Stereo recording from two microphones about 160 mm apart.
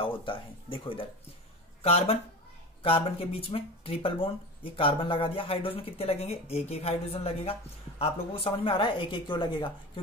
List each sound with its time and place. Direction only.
0.0 s speech: 35° left (ahead or behind)